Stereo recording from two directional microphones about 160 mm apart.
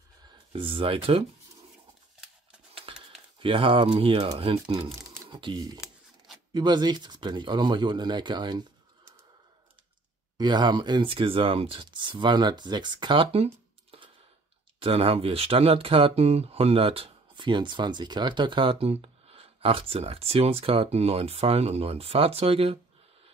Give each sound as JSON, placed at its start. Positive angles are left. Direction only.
{"t": 0.5, "sound": "speech", "side_deg": -35}
{"t": 2.7, "sound": "speech", "side_deg": -35}
{"t": 10.3, "sound": "speech", "side_deg": -25}
{"t": 14.8, "sound": "speech", "side_deg": -35}